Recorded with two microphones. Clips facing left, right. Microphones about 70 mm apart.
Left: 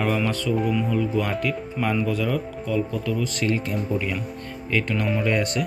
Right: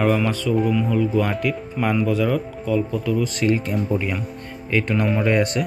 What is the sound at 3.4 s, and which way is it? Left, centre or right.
Speech, centre.